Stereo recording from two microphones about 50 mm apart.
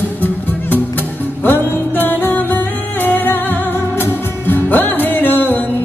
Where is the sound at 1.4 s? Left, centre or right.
Left.